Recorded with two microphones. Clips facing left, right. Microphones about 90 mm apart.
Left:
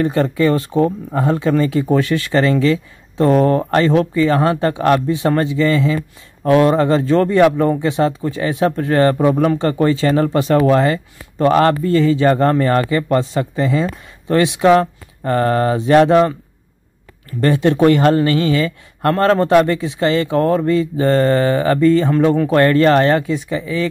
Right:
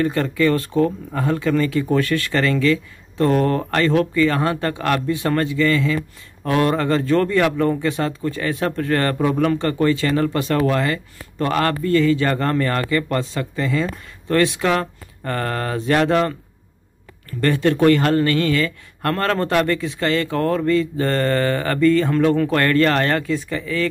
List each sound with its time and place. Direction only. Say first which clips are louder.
0.0 s speech: left 3 dB; 25° left (ahead or behind)